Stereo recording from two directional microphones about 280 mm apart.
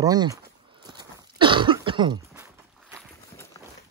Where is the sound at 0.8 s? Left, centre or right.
Centre.